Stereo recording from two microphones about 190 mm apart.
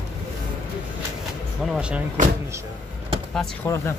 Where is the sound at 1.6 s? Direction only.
5° right (ahead or behind).